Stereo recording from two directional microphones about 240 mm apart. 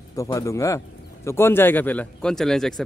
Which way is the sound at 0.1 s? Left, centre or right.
Centre.